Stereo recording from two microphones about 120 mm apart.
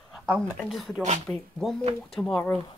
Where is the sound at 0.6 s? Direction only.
5° right (ahead or behind).